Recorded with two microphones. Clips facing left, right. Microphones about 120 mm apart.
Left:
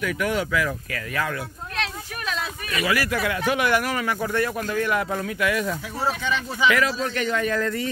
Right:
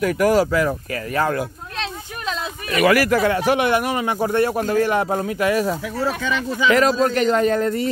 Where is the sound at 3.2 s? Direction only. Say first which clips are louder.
Right 5 dB; 35° right (ahead or behind).